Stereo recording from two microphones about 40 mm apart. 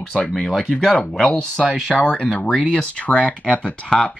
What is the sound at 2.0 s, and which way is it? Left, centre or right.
Speech, left.